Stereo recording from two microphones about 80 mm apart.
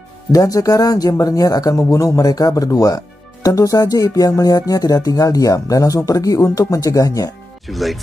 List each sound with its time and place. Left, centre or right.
0.3 s speech: left
7.6 s speech: centre